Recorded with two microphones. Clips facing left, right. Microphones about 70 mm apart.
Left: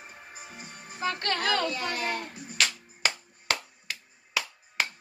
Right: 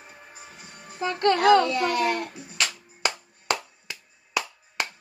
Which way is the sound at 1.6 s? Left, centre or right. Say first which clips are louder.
Right 7 dB; right.